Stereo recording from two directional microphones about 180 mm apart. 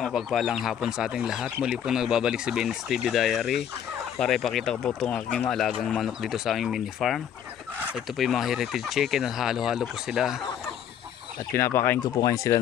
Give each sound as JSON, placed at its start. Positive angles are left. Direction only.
{"t": 0.0, "sound": "speech", "side_deg": 0}
{"t": 11.5, "sound": "speech", "side_deg": 10}